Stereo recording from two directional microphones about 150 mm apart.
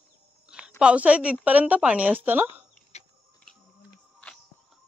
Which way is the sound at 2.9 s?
50° left (ahead or behind).